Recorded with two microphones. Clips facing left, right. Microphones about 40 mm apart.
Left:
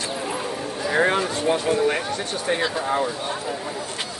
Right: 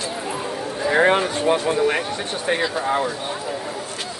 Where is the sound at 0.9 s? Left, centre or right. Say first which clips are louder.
Right 3 dB; right.